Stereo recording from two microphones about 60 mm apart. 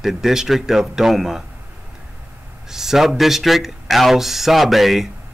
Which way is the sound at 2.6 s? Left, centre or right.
Centre.